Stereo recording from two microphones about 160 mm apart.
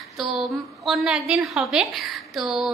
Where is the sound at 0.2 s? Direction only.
Centre (ahead or behind).